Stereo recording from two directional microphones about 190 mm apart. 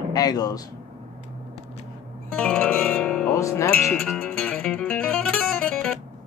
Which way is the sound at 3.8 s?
5° left (ahead or behind).